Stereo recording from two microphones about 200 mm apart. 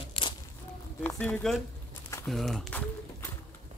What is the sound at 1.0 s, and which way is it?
Speech, 10° left (ahead or behind).